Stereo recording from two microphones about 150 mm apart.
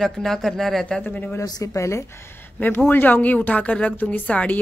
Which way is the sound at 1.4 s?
25° left (ahead or behind).